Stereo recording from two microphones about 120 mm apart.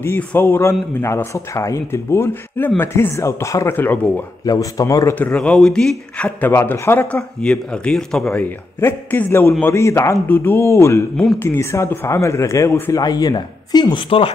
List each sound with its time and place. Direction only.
0.0 s speech: 20° left (ahead or behind)
4.5 s speech: 30° left (ahead or behind)
5.2 s speech: 10° left (ahead or behind)
8.8 s speech: 20° left (ahead or behind)
13.0 s speech: 35° left (ahead or behind)